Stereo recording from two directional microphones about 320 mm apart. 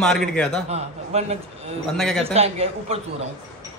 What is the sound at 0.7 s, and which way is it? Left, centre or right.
Speech, centre.